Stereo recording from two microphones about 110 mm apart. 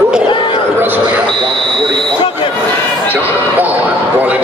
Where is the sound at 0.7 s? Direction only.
20° right (ahead or behind).